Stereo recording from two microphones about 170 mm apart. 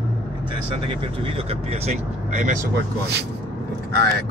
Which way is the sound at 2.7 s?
75° right (ahead or behind).